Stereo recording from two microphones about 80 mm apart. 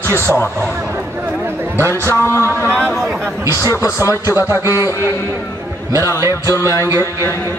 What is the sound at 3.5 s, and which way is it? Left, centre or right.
Speech, left.